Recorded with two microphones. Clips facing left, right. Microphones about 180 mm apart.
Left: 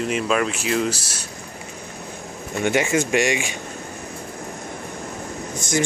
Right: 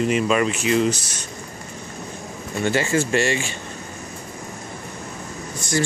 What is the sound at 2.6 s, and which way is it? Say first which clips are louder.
Speech: left 1 dB; 15° left (ahead or behind).